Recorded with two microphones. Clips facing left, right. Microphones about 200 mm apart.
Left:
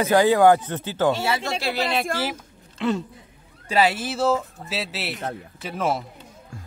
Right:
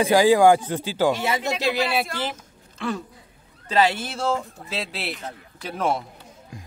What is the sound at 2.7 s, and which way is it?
Speech, 20° left (ahead or behind).